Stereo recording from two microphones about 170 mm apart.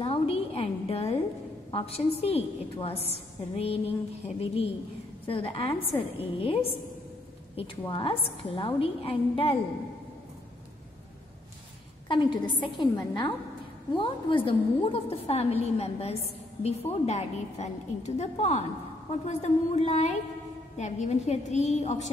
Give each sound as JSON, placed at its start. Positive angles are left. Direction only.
{"t": 0.0, "sound": "a sound", "side_deg": 35}
{"t": 1.7, "sound": "a woman's voice", "side_deg": 35}
{"t": 12.1, "sound": "a woman's voice", "side_deg": 30}